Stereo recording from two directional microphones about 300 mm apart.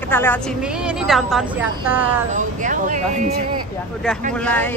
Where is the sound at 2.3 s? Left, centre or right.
Right.